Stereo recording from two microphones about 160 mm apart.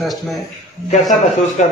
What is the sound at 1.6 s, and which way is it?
Speech, 50° left (ahead or behind).